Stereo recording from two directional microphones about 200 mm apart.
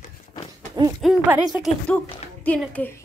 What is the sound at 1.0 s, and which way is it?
A woman's voice, 5° right (ahead or behind).